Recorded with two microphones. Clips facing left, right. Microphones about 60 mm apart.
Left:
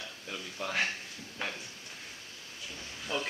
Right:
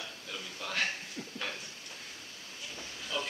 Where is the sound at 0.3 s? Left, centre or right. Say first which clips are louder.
Left 3 dB; centre.